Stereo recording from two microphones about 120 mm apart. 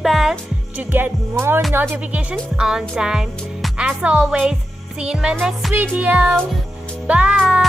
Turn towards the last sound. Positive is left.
turn(degrees=-10)  # may be behind; listen again after turning